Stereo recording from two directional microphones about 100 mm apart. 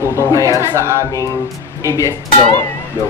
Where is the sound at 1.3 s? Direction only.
30° left (ahead or behind).